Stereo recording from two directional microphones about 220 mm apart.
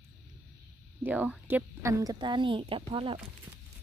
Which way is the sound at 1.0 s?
5° right (ahead or behind).